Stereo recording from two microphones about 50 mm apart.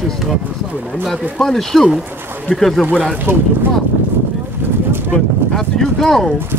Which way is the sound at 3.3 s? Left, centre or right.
Right.